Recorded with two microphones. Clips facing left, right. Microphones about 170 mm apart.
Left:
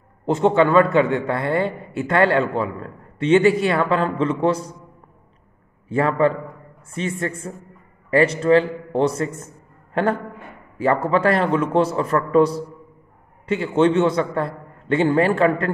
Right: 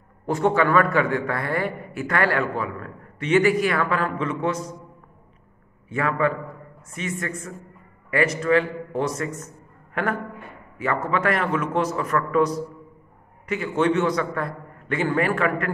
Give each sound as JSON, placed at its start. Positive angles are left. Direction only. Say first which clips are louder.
{"t": 0.3, "sound": "a man's voice", "louder": "left 4 dB", "side_deg": 25}
{"t": 5.9, "sound": "a man's voice", "louder": "left 5 dB", "side_deg": 30}